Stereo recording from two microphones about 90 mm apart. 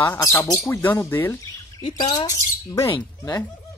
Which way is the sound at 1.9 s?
50° left (ahead or behind).